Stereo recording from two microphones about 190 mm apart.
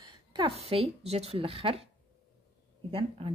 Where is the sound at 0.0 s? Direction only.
25° right (ahead or behind).